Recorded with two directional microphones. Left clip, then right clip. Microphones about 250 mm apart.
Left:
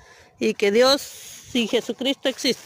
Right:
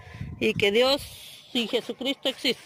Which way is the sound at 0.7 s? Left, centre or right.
Left.